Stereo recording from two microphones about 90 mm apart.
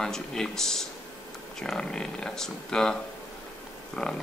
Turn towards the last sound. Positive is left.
turn(degrees=0)  # may be behind; listen again after turning